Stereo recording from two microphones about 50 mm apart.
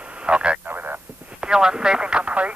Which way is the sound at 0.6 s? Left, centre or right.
Right.